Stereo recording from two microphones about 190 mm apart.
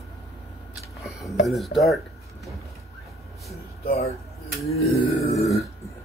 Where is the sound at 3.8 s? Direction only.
35° left (ahead or behind).